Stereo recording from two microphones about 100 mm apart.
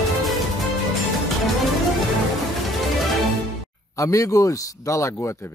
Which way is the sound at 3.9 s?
35° left (ahead or behind).